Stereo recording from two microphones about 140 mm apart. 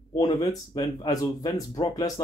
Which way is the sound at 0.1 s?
25° left (ahead or behind).